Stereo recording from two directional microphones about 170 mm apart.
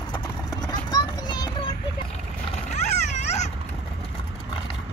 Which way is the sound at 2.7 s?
40° left (ahead or behind).